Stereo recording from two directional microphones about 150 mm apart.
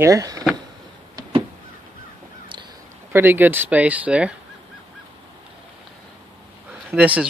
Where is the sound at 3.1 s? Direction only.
15° right (ahead or behind).